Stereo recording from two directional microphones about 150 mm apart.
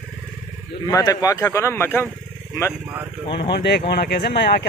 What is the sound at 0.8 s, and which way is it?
A man's voice, 25° left (ahead or behind).